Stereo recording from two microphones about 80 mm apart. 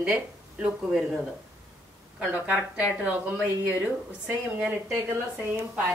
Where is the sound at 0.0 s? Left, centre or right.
Centre.